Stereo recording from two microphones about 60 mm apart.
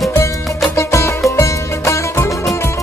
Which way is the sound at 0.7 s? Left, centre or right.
Left.